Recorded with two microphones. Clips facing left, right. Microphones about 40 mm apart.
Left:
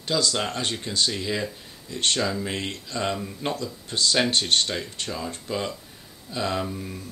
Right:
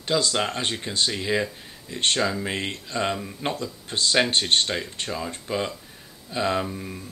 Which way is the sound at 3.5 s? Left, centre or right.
Right.